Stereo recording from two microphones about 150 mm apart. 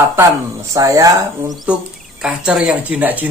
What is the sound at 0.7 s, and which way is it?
Speech, 25° right (ahead or behind).